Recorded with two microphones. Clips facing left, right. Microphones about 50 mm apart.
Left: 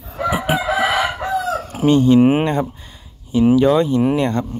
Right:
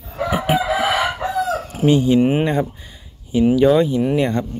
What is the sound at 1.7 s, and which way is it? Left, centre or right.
Fowl, left.